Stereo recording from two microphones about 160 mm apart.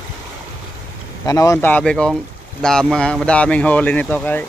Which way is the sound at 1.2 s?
20° left (ahead or behind).